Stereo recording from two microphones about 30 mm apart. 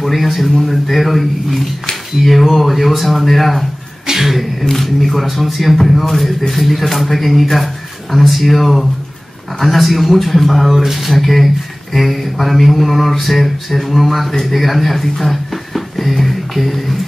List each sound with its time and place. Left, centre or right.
0.0 s speech: centre
4.0 s a sound: centre
4.6 s speech: centre
10.8 s speech: centre
11.1 s speech: centre